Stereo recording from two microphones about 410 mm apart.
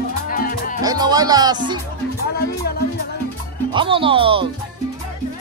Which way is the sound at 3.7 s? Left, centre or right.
Centre.